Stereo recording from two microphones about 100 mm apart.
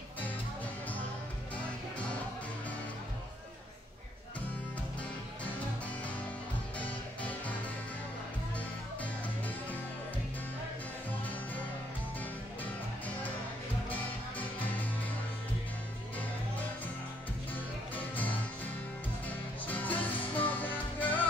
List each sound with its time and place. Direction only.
7.2 s music: 15° left (ahead or behind)
13.8 s music: 15° left (ahead or behind)
17.9 s music: 20° left (ahead or behind)